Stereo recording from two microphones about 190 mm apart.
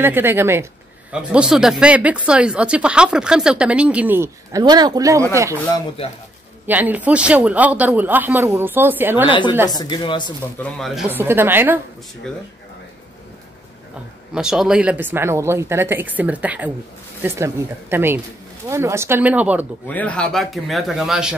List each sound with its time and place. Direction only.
0.0 s speech: 10° right (ahead or behind)
6.6 s speech: 10° right (ahead or behind)
9.3 s speech: 25° left (ahead or behind)
10.6 s speech: centre (ahead or behind)
11.1 s speech: 10° right (ahead or behind)
12.2 s speech: 5° left (ahead or behind)
14.3 s speech: 5° right (ahead or behind)
19.9 s speech: 5° left (ahead or behind)